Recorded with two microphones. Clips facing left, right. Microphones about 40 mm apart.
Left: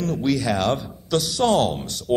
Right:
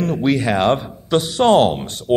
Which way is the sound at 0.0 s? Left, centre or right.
Right.